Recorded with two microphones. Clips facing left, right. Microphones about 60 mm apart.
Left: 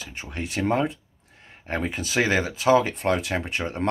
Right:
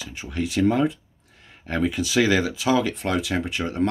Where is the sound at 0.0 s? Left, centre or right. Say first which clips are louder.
Right 5 dB; left.